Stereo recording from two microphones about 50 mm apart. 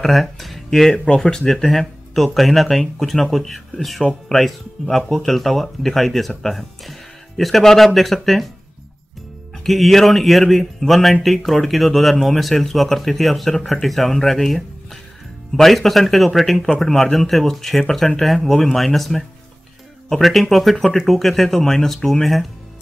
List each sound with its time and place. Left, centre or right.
0.0 s speech: centre
0.9 s speech: centre
9.6 s speech: centre